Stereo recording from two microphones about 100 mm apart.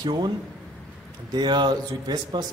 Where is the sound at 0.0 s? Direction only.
45° right (ahead or behind).